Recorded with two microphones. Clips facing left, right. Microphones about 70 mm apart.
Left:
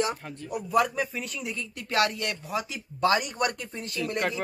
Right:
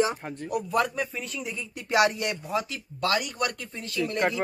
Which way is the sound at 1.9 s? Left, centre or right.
Centre.